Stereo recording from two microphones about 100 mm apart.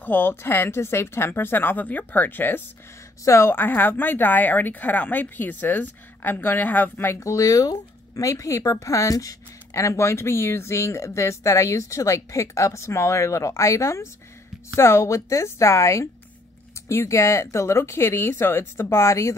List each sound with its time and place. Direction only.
0.0 s a woman's voice: 20° left (ahead or behind)